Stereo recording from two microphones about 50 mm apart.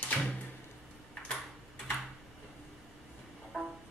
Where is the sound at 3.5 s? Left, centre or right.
Centre.